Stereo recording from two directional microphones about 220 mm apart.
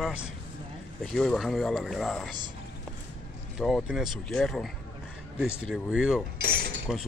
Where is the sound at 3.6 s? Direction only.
Centre (ahead or behind).